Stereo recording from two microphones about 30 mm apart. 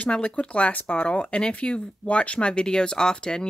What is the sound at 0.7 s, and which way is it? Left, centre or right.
Speech, left.